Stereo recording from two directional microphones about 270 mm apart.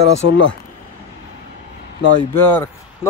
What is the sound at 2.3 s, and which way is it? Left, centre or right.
Speech, centre.